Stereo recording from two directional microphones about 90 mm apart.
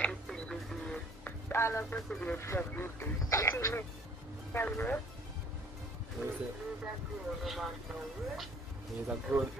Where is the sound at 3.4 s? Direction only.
35° left (ahead or behind).